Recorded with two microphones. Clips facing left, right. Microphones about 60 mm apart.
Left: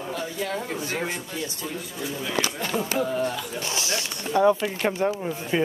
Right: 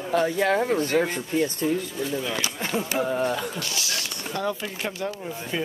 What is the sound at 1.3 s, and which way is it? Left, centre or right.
Speech, right.